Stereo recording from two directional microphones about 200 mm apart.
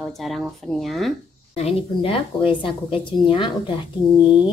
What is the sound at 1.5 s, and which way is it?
A woman's voice, 30° left (ahead or behind).